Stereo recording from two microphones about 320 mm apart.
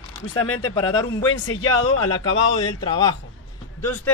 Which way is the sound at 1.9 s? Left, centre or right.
Left.